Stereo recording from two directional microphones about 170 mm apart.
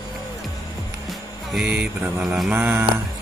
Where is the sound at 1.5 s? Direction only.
5° right (ahead or behind).